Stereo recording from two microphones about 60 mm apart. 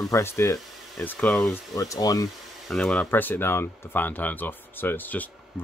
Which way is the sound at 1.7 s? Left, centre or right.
Left.